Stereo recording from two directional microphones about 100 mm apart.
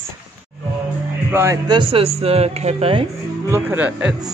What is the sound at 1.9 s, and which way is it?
Speech, 85° right.